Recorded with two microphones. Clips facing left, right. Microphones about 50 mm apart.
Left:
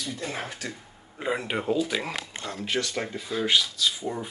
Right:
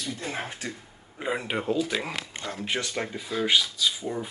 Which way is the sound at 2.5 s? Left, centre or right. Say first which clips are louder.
Left 2 dB; centre.